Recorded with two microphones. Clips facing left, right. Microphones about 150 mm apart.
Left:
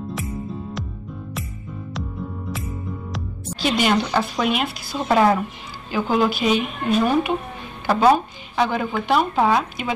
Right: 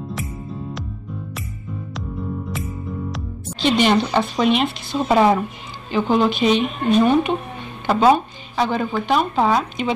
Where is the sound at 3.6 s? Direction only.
5° left (ahead or behind).